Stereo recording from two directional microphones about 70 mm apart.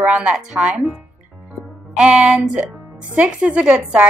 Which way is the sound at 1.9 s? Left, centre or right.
Centre.